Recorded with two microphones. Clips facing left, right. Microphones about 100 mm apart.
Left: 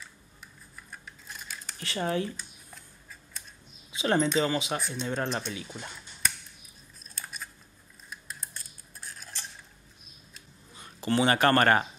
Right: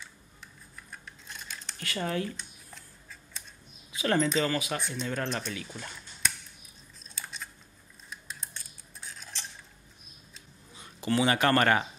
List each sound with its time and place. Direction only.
1.0 s computer keyboard: 5° left (ahead or behind)
1.8 s speech: 25° left (ahead or behind)
3.9 s speech: 25° left (ahead or behind)
4.7 s speech: centre (ahead or behind)
5.0 s speech: 25° left (ahead or behind)
7.2 s scissors: 5° left (ahead or behind)
8.1 s cutlery: 5° left (ahead or behind)
10.7 s a sound: 50° left (ahead or behind)
11.1 s speech: 40° left (ahead or behind)